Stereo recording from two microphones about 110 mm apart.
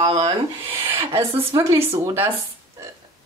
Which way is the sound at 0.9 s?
55° right (ahead or behind).